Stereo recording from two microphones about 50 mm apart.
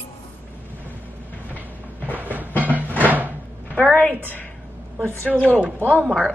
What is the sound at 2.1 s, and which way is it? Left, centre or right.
Music, right.